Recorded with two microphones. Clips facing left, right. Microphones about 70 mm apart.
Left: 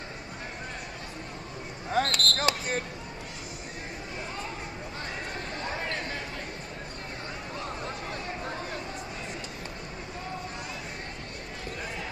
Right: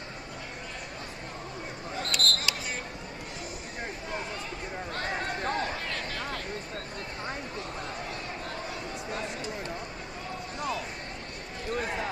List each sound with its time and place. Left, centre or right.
2.0 s basketball bounce: left
5.8 s chatter: left